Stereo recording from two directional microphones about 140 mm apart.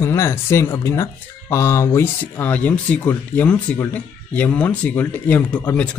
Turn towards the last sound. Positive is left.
turn(degrees=10)  # may be behind; listen again after turning